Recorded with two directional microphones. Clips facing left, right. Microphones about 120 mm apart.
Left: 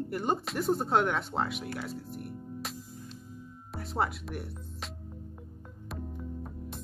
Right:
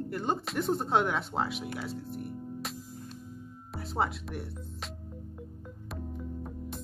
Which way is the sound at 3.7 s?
Centre (ahead or behind).